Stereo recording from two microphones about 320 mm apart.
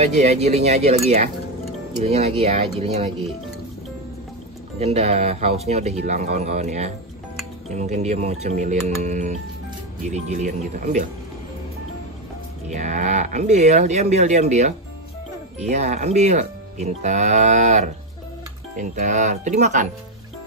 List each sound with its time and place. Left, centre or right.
0.0 s speech: centre
4.7 s speech: centre
12.7 s speech: right